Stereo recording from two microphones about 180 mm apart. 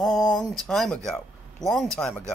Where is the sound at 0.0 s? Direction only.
Centre (ahead or behind).